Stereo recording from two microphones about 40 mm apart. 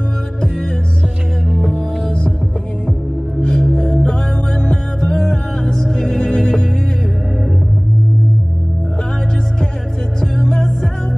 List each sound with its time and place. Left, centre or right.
1.6 s music: centre
3.3 s music: left
10.2 s music: centre